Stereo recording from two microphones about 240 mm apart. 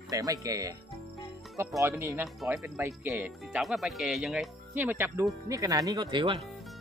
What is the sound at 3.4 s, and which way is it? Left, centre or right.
Speech, centre.